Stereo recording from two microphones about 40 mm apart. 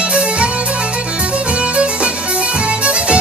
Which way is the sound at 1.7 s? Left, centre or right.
Right.